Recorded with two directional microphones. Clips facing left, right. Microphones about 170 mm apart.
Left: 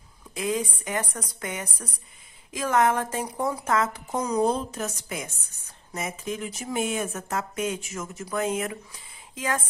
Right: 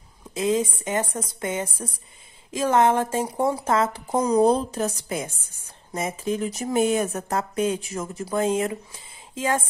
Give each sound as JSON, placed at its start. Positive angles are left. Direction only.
{"t": 0.3, "sound": "a woman's voice", "side_deg": -25}